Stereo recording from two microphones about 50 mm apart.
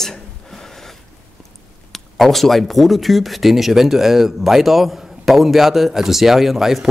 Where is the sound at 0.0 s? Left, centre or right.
Centre.